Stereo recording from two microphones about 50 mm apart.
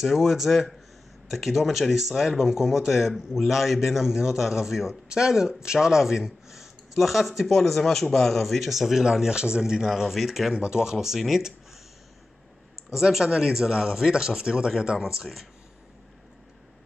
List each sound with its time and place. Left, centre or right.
0.0 s speech: centre
10.5 s speech: centre
12.9 s speech: centre